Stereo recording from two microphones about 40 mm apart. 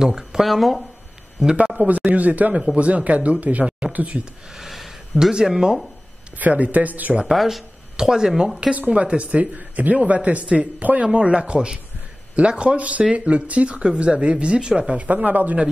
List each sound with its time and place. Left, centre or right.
0.0 s speech: centre
1.8 s speech: right
4.5 s a sound: centre
5.3 s speech: centre
6.3 s speech: right
7.2 s speech: centre
8.0 s speech: centre
8.9 s speech: right
11.1 s speech: right
14.9 s speech: right